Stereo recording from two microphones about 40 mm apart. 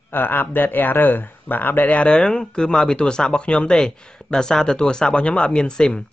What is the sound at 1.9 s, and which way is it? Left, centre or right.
Speech, left.